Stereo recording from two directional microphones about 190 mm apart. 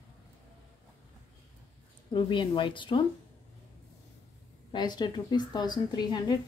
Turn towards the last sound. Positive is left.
turn(degrees=20)  # may be behind; listen again after turning